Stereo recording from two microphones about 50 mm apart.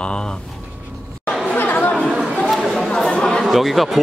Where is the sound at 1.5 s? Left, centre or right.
Left.